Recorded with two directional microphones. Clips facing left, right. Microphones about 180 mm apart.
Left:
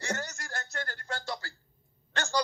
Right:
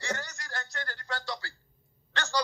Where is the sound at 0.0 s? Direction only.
45° left (ahead or behind).